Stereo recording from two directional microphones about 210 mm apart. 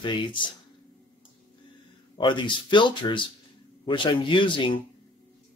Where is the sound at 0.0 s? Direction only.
20° left (ahead or behind).